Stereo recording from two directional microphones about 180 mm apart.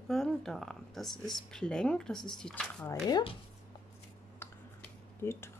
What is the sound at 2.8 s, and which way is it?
Speech, 25° left (ahead or behind).